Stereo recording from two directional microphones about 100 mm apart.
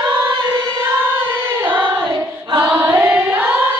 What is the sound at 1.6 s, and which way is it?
Choir, 55° right (ahead or behind).